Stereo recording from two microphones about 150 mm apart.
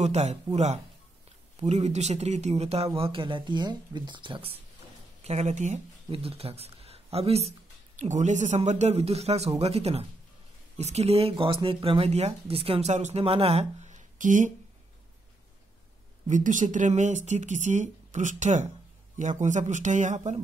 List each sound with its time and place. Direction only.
0.0 s speech: 45° right (ahead or behind)
5.2 s speech: 45° right (ahead or behind)
6.0 s speech: 40° right (ahead or behind); by 14.5 s 55° right (ahead or behind)
16.3 s speech: 55° right (ahead or behind)